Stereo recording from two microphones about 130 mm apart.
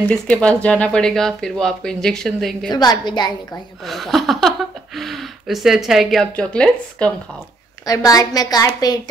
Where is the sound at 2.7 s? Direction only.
30° left (ahead or behind).